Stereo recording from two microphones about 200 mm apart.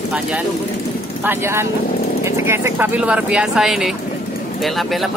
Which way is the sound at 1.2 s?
10° right (ahead or behind).